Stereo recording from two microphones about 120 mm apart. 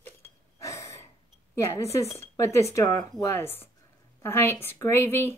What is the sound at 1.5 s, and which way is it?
Speech, 25° left (ahead or behind).